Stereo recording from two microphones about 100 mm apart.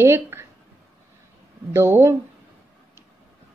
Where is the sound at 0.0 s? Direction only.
25° right (ahead or behind).